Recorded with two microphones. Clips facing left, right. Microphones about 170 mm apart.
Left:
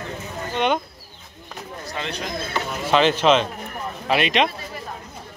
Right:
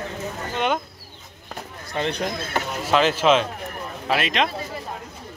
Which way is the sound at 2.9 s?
5° right (ahead or behind).